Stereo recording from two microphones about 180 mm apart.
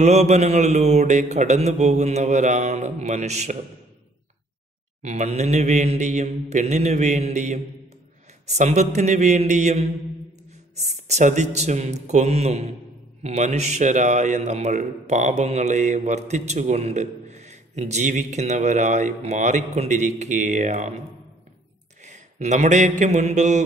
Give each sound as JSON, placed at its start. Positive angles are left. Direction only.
{"t": 0.0, "sound": "a man's voice", "side_deg": -40}
{"t": 5.0, "sound": "a man's voice", "side_deg": -40}
{"t": 22.0, "sound": "a man's voice", "side_deg": -40}